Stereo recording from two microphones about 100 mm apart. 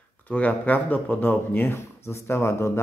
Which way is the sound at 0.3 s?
15° left (ahead or behind).